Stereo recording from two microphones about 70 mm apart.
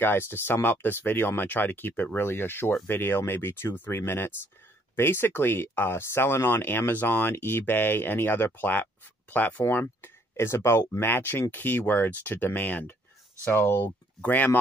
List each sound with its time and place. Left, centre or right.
0.0 s speech: left
13.5 s speech: left